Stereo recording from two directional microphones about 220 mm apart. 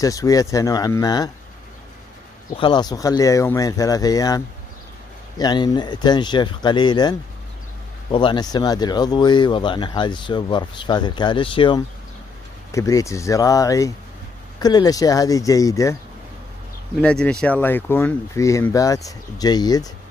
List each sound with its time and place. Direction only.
0.0 s speech: 15° left (ahead or behind)
2.5 s speech: 20° left (ahead or behind)
5.4 s speech: 20° left (ahead or behind)
17.0 s speech: 5° left (ahead or behind)